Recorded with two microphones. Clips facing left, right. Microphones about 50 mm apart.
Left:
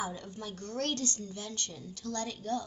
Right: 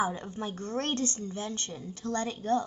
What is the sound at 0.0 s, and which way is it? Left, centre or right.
A woman's voice, right.